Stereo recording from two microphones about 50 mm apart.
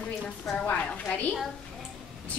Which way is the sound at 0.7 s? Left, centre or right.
Left.